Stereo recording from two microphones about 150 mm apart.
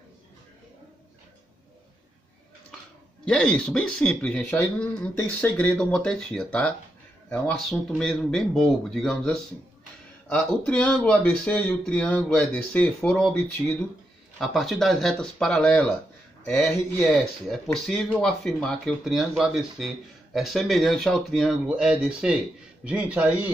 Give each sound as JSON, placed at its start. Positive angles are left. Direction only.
{"t": 3.3, "sound": "speech", "side_deg": 5}
{"t": 14.4, "sound": "a man's voice", "side_deg": 0}